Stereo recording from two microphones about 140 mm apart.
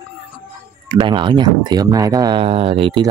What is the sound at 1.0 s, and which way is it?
Speech, 35° right (ahead or behind).